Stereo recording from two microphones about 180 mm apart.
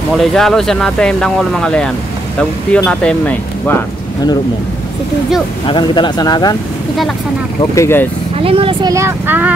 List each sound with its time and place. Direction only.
0.2 s speech: centre (ahead or behind)
5.7 s speech: 25° left (ahead or behind)
7.7 s speech: 15° left (ahead or behind)
8.4 s speech: 30° right (ahead or behind)
8.9 s speech: 15° right (ahead or behind)